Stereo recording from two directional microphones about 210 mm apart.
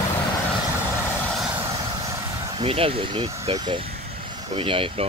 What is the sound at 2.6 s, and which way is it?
Speech, 25° right (ahead or behind).